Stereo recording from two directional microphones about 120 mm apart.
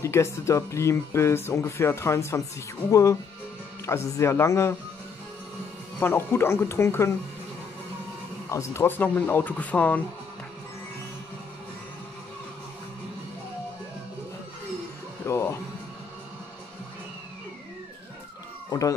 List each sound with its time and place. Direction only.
0.0 s speech: 25° left (ahead or behind)
5.9 s speech: 20° left (ahead or behind)
8.5 s speech: 25° left (ahead or behind)
15.2 s music: 25° left (ahead or behind)
18.7 s speech: 30° left (ahead or behind)